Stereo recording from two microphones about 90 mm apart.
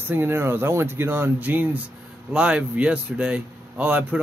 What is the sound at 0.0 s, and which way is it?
Speech, 25° right (ahead or behind).